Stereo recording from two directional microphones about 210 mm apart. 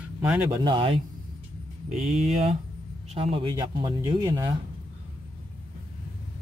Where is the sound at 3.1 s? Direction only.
25° right (ahead or behind).